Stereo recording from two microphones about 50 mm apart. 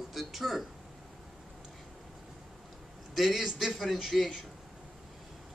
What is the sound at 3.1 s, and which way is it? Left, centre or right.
Speech, centre.